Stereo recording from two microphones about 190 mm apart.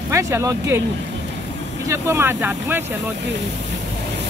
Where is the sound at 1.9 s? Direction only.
15° right (ahead or behind).